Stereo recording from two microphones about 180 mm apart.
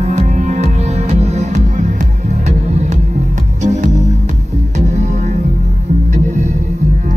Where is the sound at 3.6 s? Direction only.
40° right (ahead or behind).